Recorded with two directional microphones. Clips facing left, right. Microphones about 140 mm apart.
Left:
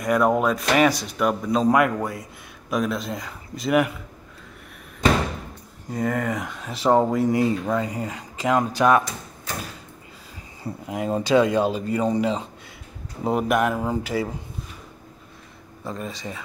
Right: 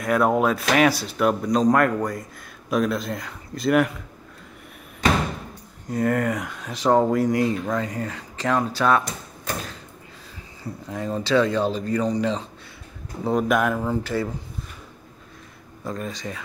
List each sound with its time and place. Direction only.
0.0 s speech: centre (ahead or behind)
5.9 s speech: centre (ahead or behind)
10.6 s speech: 25° left (ahead or behind)
15.8 s speech: centre (ahead or behind)